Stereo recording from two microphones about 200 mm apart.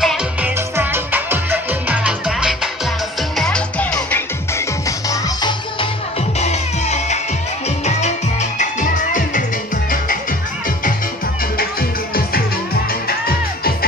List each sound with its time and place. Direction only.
0.0 s music: centre (ahead or behind); by 5.9 s 20° left (ahead or behind)
6.4 s music: 35° left (ahead or behind)